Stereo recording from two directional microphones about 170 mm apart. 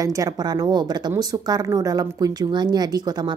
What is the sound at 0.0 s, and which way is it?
A woman's voice, 20° right (ahead or behind).